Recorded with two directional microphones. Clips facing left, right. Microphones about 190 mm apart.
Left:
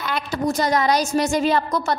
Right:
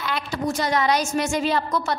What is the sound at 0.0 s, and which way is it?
A woman's voice, 45° left (ahead or behind).